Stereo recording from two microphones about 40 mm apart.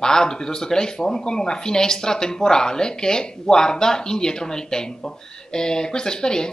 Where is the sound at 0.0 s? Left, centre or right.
Centre.